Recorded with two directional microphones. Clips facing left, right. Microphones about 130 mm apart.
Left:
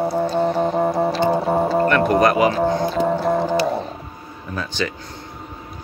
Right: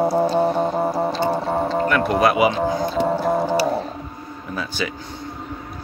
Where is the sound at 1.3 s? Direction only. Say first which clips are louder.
Left 3 dB; 10° left (ahead or behind).